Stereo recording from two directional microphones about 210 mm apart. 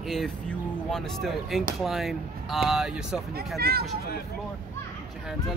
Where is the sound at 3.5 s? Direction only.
50° right (ahead or behind).